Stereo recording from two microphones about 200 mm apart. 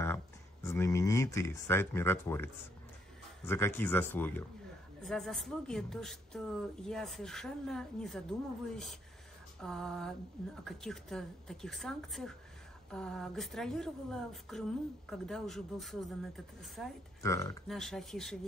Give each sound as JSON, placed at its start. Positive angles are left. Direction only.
{"t": 0.0, "sound": "speech", "side_deg": 10}
{"t": 17.2, "sound": "speech", "side_deg": 15}
{"t": 17.6, "sound": "speech", "side_deg": 0}